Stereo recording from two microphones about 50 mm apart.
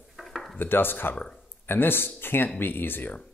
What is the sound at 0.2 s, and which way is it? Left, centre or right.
Dishes, centre.